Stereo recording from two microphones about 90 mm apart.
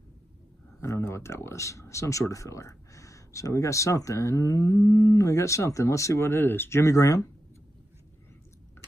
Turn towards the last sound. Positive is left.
turn(degrees=40)  # may be behind; listen again after turning